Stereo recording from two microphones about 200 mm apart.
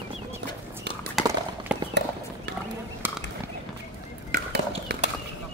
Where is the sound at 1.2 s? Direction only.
Centre (ahead or behind).